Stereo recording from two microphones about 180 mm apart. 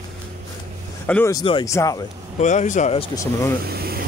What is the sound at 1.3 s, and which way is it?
Speech, 25° left (ahead or behind).